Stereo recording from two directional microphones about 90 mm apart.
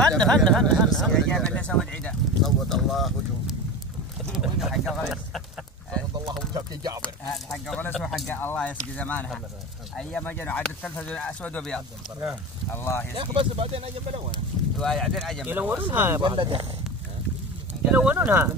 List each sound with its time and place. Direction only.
0.0 s speech: 10° left (ahead or behind)
6.5 s speech: 50° right (ahead or behind)
7.8 s speech: 10° left (ahead or behind)
8.3 s speech: 20° left (ahead or behind)
12.7 s speech: 25° left (ahead or behind)
13.1 s speech: 75° right (ahead or behind); by 14.3 s 90° right
14.8 s speech: centre (ahead or behind)
15.4 s speech: 20° right (ahead or behind)
16.2 s speech: 60° right (ahead or behind)
17.9 s speech: 15° right (ahead or behind)